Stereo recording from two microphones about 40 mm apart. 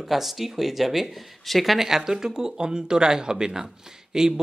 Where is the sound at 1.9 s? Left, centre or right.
Centre.